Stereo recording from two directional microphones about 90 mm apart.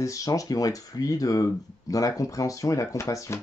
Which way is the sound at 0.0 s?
40° left (ahead or behind).